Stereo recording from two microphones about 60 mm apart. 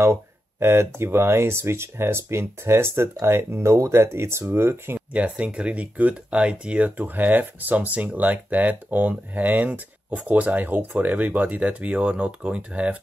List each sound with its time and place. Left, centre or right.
0.0 s speech: right
5.1 s speech: right